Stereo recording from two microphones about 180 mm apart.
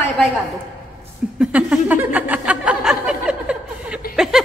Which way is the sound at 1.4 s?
5° right (ahead or behind).